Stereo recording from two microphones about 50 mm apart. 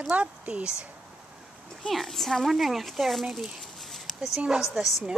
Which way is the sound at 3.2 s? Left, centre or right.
Centre.